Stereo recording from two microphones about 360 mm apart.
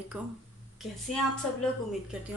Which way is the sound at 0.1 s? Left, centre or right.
Centre.